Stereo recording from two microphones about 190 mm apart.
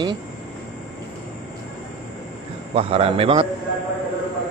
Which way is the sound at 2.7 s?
30° right (ahead or behind).